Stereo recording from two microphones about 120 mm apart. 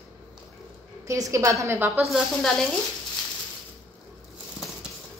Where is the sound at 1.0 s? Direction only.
25° right (ahead or behind).